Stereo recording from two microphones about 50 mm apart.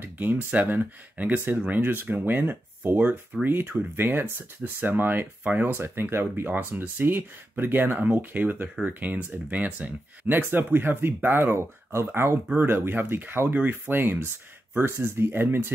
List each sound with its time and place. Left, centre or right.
0.0 s speech: right
5.9 s speech: right
11.5 s speech: right
14.8 s speech: right